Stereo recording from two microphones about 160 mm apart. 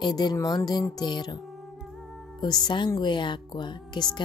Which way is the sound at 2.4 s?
25° left (ahead or behind).